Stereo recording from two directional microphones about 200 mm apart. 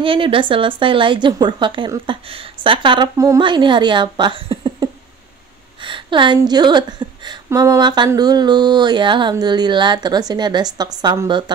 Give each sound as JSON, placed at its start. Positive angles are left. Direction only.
{"t": 0.0, "sound": "a woman's voice", "side_deg": -25}